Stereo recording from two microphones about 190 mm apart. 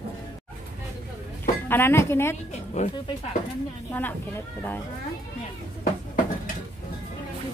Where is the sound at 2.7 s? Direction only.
35° left (ahead or behind).